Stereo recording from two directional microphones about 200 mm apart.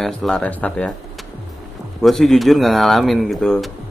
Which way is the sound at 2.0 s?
Centre (ahead or behind).